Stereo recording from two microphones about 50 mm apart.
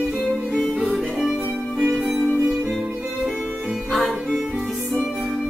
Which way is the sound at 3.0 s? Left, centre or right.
Centre.